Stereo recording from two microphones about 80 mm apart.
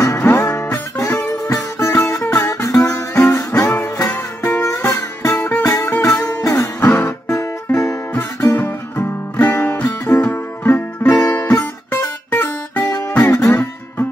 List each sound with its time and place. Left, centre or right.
0.2 s music: left
4.1 s music: left
5.3 s music: left
5.6 s music: left
5.9 s music: left
9.8 s music: left
13.2 s music: left